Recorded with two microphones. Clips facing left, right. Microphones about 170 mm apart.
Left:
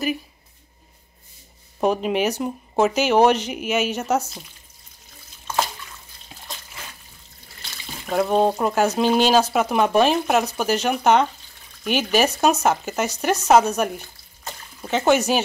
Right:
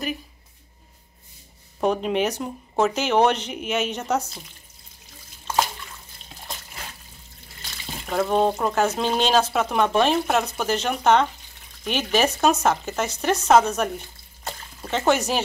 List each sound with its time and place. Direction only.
1.8 s speech: 5° left (ahead or behind)
8.1 s speech: 15° left (ahead or behind)